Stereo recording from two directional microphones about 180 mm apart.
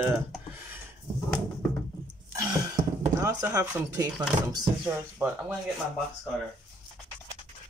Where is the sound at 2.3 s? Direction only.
20° right (ahead or behind).